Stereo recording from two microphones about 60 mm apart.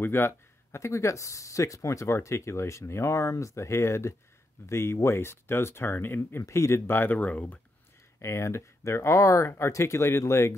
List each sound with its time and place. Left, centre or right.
0.0 s speech: left
6.4 s speech: left
6.9 s speech: left
8.2 s speech: left